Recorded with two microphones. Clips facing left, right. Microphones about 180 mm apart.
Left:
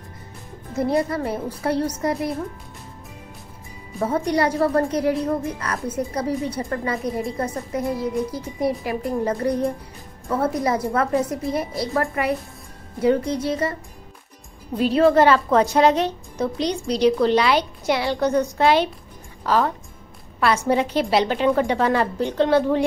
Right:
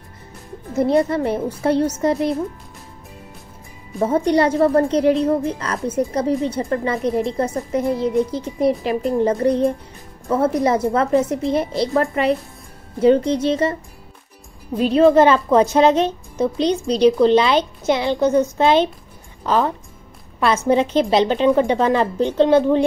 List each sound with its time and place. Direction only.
0.7 s a woman's voice: 25° right (ahead or behind)
4.0 s a woman's voice: 25° right (ahead or behind)
14.8 s a woman's voice: 20° right (ahead or behind)